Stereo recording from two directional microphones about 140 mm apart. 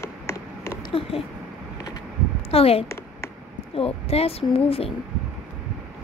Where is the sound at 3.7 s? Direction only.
45° left (ahead or behind).